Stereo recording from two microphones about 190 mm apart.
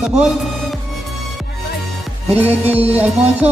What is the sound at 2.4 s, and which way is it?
Music, 35° right (ahead or behind).